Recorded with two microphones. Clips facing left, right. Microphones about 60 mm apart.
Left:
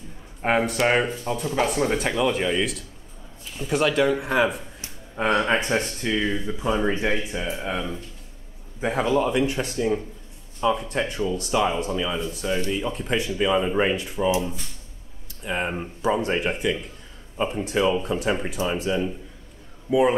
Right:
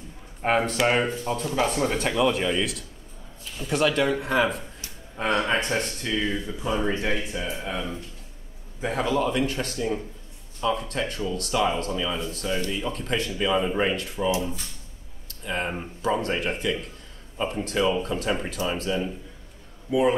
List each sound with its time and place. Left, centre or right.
0.4 s a man's voice: centre
4.8 s speech: centre